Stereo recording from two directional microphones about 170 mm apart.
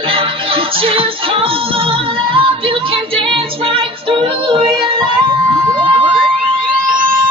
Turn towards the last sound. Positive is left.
turn(degrees=-30)  # may be behind; listen again after turning